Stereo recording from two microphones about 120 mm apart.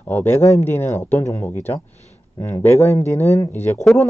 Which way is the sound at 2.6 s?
20° left (ahead or behind).